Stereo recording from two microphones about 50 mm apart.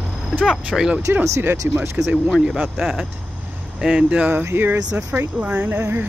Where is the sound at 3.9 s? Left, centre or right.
Right.